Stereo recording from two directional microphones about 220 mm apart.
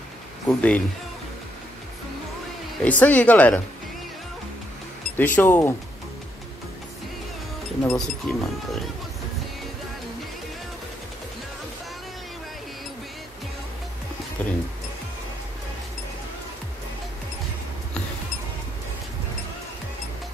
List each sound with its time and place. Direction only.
0.5 s speech: 5° left (ahead or behind)
2.8 s speech: 5° left (ahead or behind)
5.1 s speech: 10° left (ahead or behind)
7.9 s speech: centre (ahead or behind)
14.4 s music: 10° left (ahead or behind)